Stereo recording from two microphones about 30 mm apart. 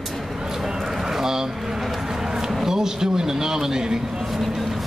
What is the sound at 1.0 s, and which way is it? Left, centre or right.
Vehicle, centre.